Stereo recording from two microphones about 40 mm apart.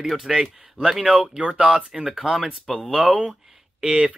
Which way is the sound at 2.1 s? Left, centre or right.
Centre.